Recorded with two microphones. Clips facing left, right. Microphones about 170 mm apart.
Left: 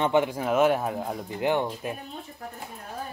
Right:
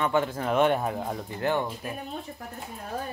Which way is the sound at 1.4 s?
20° left (ahead or behind).